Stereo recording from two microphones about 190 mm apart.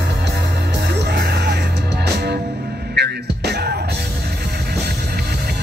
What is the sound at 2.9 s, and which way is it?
Music, 60° right (ahead or behind).